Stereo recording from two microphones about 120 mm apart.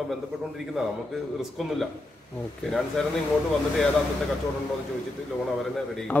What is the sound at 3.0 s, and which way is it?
Speech, 5° left (ahead or behind).